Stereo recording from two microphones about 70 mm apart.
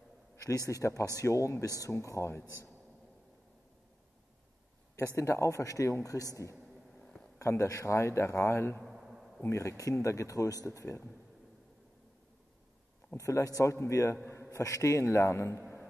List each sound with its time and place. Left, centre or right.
0.7 s speech: left
2.4 s a man's voice: right
4.9 s speech: left
6.5 s a sound: centre
7.3 s speech: left
8.8 s a sound: centre
9.4 s speech: left
13.1 s speech: left